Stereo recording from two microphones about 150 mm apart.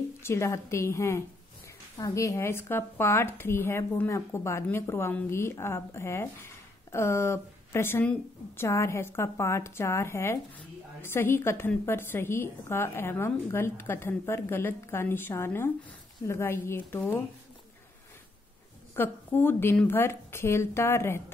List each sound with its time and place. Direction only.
0.2 s speech: 20° left (ahead or behind)
18.9 s speech: 15° left (ahead or behind)